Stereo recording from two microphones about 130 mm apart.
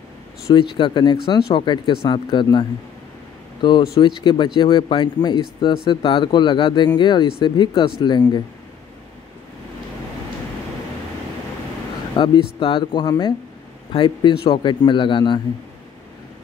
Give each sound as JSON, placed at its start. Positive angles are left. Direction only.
{"t": 0.5, "sound": "speech", "side_deg": 40}
{"t": 3.6, "sound": "speech", "side_deg": 35}
{"t": 12.2, "sound": "speech", "side_deg": 35}